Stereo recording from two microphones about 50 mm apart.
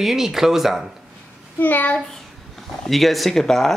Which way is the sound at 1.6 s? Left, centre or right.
Left.